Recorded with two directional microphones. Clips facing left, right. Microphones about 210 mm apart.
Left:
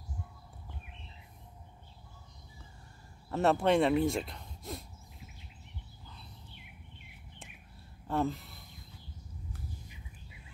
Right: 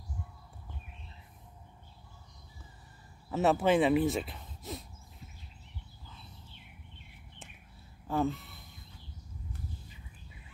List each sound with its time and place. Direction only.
3.3 s speech: 5° right (ahead or behind)
8.1 s speech: centre (ahead or behind)